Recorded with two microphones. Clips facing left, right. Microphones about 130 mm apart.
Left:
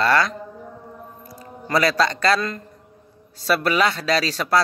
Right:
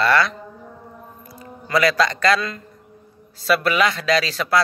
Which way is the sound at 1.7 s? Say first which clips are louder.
Right 1 dB; 35° left (ahead or behind).